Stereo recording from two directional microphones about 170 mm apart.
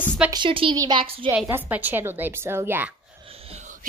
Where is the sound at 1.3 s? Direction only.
10° right (ahead or behind).